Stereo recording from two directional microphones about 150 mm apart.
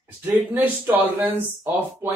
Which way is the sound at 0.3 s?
15° right (ahead or behind).